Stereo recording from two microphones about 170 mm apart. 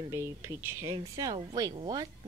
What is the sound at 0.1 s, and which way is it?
A woman's voice, 15° right (ahead or behind).